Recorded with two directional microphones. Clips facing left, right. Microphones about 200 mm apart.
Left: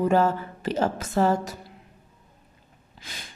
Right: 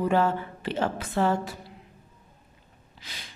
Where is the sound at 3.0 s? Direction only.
50° left (ahead or behind).